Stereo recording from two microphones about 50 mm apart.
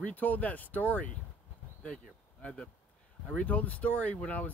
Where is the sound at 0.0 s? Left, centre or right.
Left.